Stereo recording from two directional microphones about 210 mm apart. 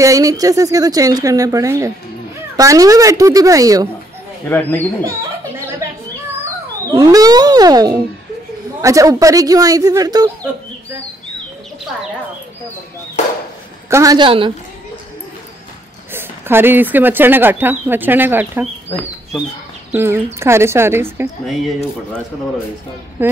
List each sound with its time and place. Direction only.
0.0 s speech: 15° right (ahead or behind)
4.5 s speech: 10° left (ahead or behind)
6.9 s speech: 15° right (ahead or behind)
13.8 s a woman's voice: 15° right (ahead or behind)
16.1 s speech: 10° right (ahead or behind)
19.9 s speech: 10° right (ahead or behind)
21.5 s speech: centre (ahead or behind)